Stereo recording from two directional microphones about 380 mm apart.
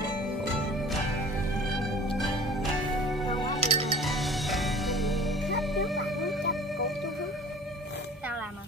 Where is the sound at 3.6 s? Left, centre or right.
Centre.